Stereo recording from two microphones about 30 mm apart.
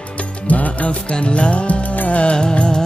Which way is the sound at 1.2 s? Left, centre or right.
Left.